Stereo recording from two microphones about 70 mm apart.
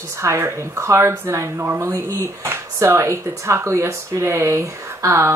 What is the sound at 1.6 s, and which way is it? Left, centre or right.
Speech, right.